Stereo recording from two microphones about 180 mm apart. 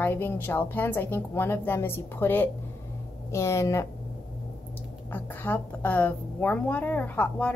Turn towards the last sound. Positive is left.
turn(degrees=10)  # may be behind; listen again after turning